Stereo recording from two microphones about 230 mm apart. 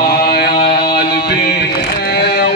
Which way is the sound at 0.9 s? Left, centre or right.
Left.